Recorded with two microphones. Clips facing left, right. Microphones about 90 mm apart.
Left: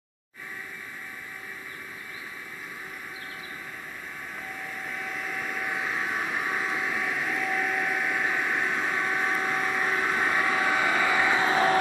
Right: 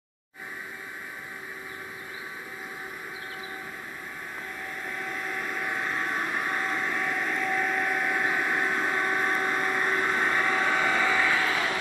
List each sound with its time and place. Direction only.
4.8 s vehicle: centre (ahead or behind); by 11.8 s 30° left (ahead or behind)